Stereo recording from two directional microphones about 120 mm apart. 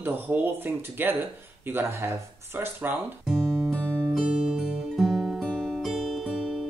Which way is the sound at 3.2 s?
5° left (ahead or behind).